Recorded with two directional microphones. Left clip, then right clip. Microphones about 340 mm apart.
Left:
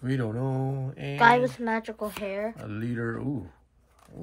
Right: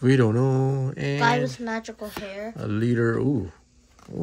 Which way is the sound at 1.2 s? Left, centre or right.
Centre.